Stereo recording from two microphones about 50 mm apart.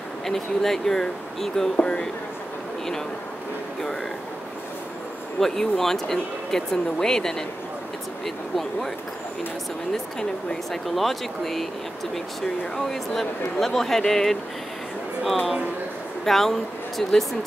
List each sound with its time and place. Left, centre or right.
0.2 s speech: centre
5.4 s speech: centre
10.5 s a woman's voice: centre
12.7 s speech: centre
16.3 s a woman's voice: centre